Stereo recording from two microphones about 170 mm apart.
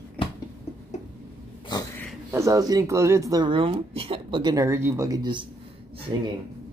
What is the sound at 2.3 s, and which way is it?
Speech, 20° right (ahead or behind).